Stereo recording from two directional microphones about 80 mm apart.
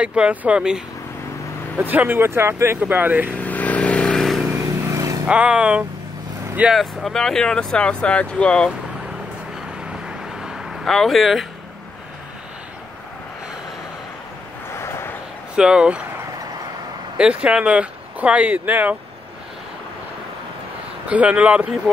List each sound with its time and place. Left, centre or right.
0.0 s speech: centre
1.8 s speech: right
3.3 s vehicle: centre
4.9 s vehicle: right
5.2 s speech: centre
6.7 s speech: centre
10.0 s vehicle: centre
14.7 s a sound: left
15.5 s speech: centre
17.2 s speech: centre
21.1 s speech: centre